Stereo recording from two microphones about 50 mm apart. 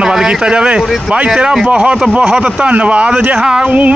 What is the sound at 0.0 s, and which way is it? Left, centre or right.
Speech, centre.